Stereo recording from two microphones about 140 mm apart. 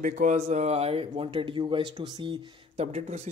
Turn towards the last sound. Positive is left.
turn(degrees=-50)  # may be behind; listen again after turning